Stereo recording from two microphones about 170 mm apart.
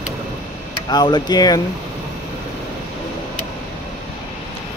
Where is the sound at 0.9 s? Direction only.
25° left (ahead or behind).